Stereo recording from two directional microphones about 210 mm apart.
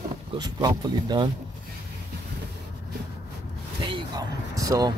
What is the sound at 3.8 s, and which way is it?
Vehicle, 20° right (ahead or behind).